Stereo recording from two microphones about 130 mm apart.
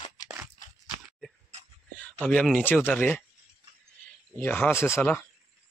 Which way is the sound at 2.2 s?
10° left (ahead or behind).